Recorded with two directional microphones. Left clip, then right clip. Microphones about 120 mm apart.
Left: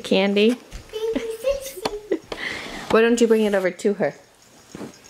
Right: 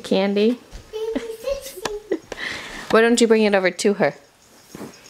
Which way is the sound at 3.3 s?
25° right (ahead or behind).